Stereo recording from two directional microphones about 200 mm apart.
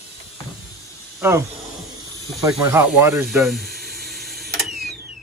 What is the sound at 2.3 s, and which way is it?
Snake, centre (ahead or behind).